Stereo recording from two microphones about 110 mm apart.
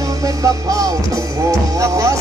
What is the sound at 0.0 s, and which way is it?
Music, 35° right (ahead or behind).